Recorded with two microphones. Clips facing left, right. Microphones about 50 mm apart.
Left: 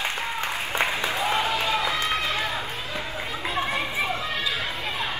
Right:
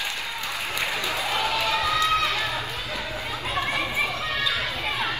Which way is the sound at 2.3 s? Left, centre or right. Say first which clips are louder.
Even; left.